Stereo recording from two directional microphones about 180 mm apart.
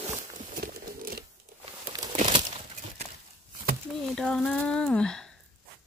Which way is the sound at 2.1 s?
40° right (ahead or behind).